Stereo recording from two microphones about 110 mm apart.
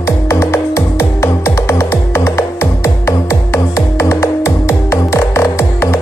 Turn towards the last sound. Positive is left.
turn(degrees=25)  # may be behind; listen again after turning